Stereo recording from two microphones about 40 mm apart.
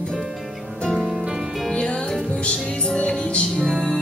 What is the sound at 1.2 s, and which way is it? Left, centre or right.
Music, centre.